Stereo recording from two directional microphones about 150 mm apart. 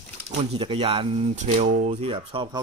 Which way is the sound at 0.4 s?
40° right (ahead or behind).